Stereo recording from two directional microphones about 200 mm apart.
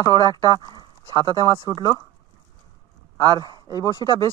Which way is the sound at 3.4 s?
20° right (ahead or behind).